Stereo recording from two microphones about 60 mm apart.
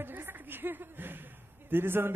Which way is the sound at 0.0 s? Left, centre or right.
Right.